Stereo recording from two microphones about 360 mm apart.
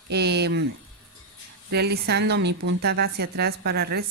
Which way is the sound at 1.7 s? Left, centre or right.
Right.